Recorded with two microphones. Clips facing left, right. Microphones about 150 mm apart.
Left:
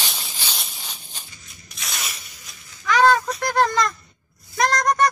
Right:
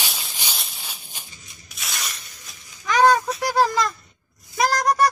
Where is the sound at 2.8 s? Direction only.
15° right (ahead or behind).